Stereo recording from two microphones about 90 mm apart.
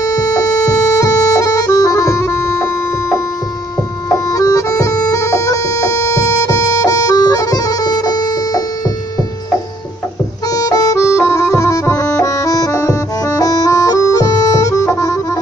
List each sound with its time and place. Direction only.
0.0 s music: 40° left (ahead or behind)
4.1 s bagpipes: 40° left (ahead or behind)
10.5 s music: 40° left (ahead or behind)